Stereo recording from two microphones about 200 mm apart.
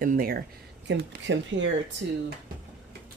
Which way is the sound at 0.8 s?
60° right (ahead or behind).